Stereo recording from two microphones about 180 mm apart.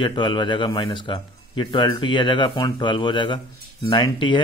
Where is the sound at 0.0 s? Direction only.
25° left (ahead or behind).